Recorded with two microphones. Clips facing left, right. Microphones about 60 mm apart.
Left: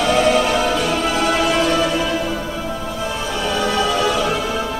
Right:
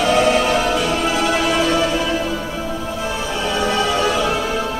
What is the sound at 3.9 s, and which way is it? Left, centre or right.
Music, right.